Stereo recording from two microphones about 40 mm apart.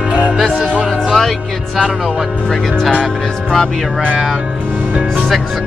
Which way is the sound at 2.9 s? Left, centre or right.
Centre.